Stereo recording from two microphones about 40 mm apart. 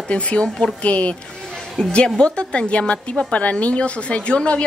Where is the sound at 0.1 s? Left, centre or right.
Left.